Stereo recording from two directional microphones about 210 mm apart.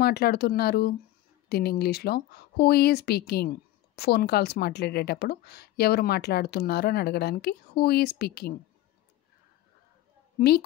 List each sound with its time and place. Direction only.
0.0 s speech: 50° left (ahead or behind)